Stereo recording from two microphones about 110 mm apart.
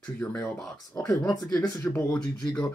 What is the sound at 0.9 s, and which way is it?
Speech, 35° left (ahead or behind).